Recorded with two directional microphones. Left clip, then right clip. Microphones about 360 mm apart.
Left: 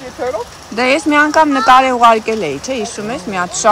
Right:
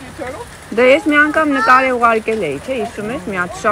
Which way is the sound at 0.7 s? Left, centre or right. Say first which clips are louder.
Right 1 dB; centre.